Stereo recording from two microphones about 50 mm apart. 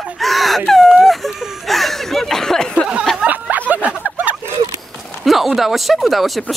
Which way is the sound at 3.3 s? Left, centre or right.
Right.